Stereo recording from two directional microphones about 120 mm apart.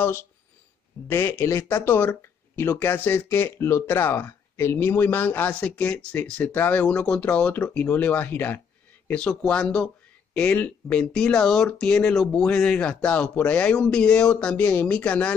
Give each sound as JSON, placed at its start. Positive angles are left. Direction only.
{"t": 1.0, "sound": "speech", "side_deg": 20}